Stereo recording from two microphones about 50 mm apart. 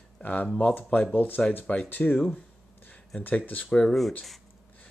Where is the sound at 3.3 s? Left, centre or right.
Left.